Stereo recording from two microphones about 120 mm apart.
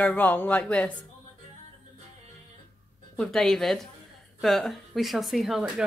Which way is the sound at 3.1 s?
5° left (ahead or behind).